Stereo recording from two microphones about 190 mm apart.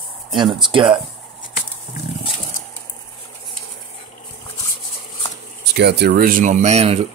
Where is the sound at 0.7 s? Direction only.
25° right (ahead or behind).